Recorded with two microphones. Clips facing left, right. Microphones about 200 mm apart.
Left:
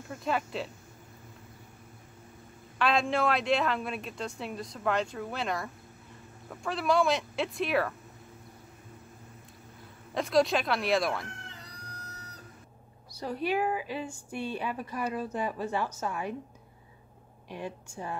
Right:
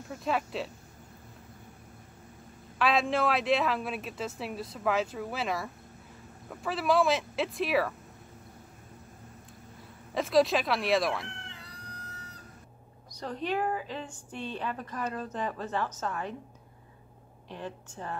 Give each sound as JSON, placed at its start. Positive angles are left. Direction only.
{"t": 0.1, "sound": "speech", "side_deg": 0}
{"t": 2.8, "sound": "speech", "side_deg": 0}
{"t": 10.1, "sound": "speech", "side_deg": 0}
{"t": 11.2, "sound": "cat", "side_deg": 40}
{"t": 13.1, "sound": "a woman's voice", "side_deg": 10}
{"t": 17.5, "sound": "a woman's voice", "side_deg": 10}